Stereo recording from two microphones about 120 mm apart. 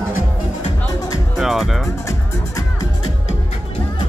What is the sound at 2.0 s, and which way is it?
Music, 30° left (ahead or behind).